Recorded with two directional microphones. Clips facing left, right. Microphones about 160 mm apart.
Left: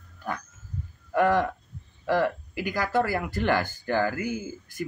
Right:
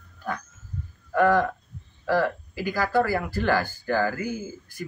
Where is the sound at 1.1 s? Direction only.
20° left (ahead or behind).